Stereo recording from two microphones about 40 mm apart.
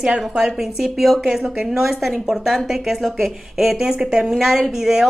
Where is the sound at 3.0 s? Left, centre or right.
Centre.